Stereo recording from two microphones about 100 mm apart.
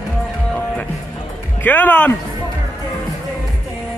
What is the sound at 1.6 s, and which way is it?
Speech, 15° left (ahead or behind).